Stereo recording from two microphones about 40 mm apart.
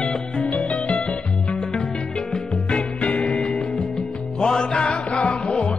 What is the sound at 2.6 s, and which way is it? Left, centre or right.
Music, left.